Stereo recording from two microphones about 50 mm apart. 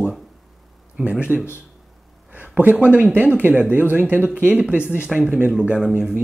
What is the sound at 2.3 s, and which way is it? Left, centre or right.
Speech, right.